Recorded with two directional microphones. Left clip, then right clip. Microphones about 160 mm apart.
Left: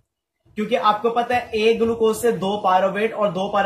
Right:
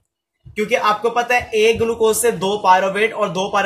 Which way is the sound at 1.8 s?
40° right (ahead or behind).